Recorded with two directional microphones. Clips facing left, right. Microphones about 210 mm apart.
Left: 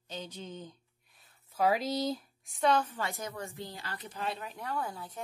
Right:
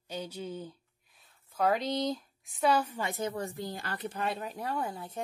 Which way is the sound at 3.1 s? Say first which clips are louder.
Right 6 dB; 25° right (ahead or behind).